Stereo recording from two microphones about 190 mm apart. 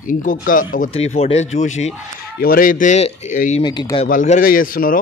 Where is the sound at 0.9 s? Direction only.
35° left (ahead or behind).